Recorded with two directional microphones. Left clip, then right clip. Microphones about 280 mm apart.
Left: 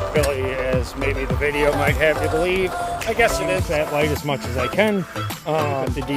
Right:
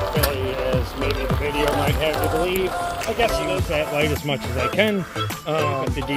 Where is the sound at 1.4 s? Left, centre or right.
Left.